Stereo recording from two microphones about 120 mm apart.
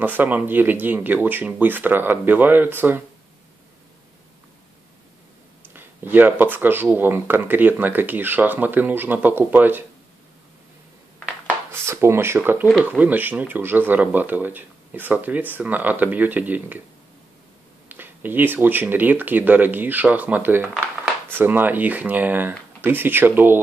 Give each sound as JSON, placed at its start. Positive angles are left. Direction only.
{"t": 0.0, "sound": "speech", "side_deg": -15}
{"t": 5.7, "sound": "speech", "side_deg": -15}
{"t": 11.4, "sound": "a sound", "side_deg": -20}
{"t": 12.8, "sound": "speech", "side_deg": -15}
{"t": 17.8, "sound": "speech", "side_deg": -15}